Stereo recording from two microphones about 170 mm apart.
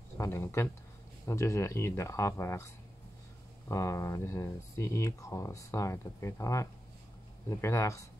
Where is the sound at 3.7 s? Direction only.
20° left (ahead or behind).